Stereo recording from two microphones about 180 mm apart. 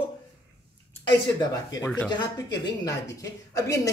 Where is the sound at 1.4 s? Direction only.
20° left (ahead or behind).